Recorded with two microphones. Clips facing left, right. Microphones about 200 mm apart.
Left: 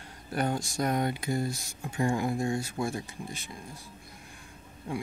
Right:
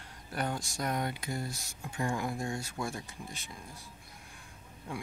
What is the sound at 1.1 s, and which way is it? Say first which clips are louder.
Speech: left 7 dB; 15° left (ahead or behind).